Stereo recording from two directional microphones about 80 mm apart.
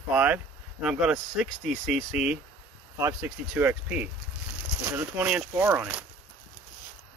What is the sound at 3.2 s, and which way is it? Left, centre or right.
Speech, centre.